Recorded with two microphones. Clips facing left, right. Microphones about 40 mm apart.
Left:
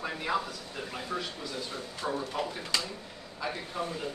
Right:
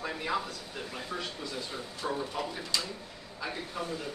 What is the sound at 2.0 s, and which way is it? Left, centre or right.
Speech, centre.